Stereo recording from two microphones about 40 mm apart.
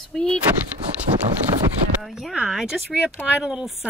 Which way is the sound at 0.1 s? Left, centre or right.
Centre.